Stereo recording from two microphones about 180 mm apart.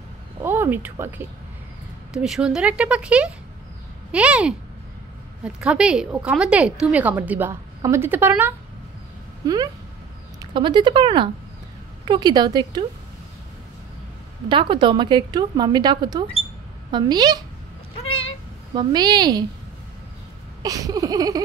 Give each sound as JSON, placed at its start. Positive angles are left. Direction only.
{"t": 0.4, "sound": "a woman's voice", "side_deg": -10}
{"t": 10.4, "sound": "a woman's voice", "side_deg": -25}
{"t": 14.5, "sound": "a woman's voice", "side_deg": -30}
{"t": 18.0, "sound": "cat", "side_deg": 30}
{"t": 18.8, "sound": "a woman's voice", "side_deg": -25}
{"t": 20.6, "sound": "a woman's voice", "side_deg": -20}